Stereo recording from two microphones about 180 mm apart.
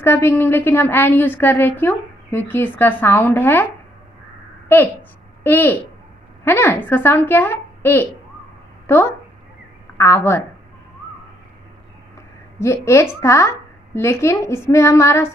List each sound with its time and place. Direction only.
0.0 s a woman's voice: 15° left (ahead or behind)
5.4 s a woman's voice: 10° left (ahead or behind)
12.5 s a woman's voice: 15° left (ahead or behind)